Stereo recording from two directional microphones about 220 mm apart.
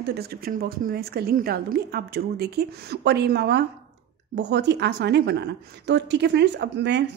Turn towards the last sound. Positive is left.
turn(degrees=-50)  # may be behind; listen again after turning